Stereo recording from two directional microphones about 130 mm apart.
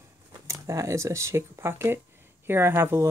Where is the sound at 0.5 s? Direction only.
25° right (ahead or behind).